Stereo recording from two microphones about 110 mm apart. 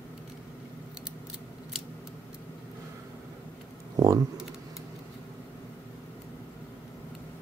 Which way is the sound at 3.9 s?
35° right (ahead or behind).